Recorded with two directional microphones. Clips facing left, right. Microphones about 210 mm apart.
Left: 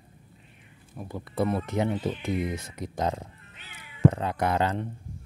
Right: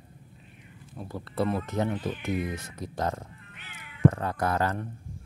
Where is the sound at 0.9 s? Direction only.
15° left (ahead or behind).